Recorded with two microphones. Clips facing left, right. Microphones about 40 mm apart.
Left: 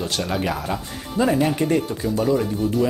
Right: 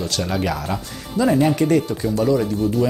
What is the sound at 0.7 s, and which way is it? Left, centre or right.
Speech, left.